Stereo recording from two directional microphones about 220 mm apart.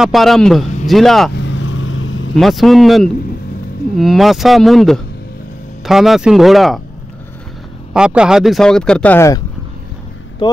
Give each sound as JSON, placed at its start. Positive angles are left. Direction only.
{"t": 0.0, "sound": "speech", "side_deg": 0}
{"t": 1.3, "sound": "vehicle", "side_deg": 55}
{"t": 2.3, "sound": "speech", "side_deg": 0}
{"t": 7.9, "sound": "speech", "side_deg": -5}